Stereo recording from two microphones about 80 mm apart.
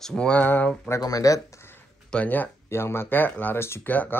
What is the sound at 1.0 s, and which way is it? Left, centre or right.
Speech, left.